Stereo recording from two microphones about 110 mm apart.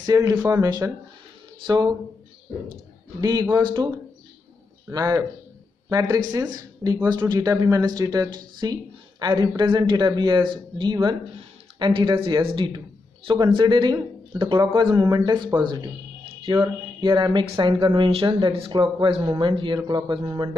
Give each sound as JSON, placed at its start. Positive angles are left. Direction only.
{"t": 0.0, "sound": "speech", "side_deg": -35}
{"t": 3.2, "sound": "a man's voice", "side_deg": -35}
{"t": 16.3, "sound": "a sound", "side_deg": -50}
{"t": 17.0, "sound": "speech", "side_deg": -40}